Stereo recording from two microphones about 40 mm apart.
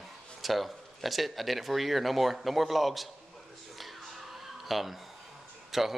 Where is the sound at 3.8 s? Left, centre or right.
Centre.